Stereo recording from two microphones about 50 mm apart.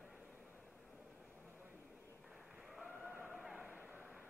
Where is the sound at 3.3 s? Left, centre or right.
Centre.